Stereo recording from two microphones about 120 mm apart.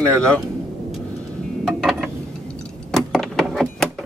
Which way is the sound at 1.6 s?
5° right (ahead or behind).